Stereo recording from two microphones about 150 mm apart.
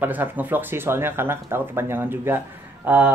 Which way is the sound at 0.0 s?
10° right (ahead or behind).